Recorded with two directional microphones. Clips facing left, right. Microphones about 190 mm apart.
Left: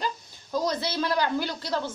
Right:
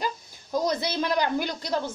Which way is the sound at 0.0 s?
15° right (ahead or behind).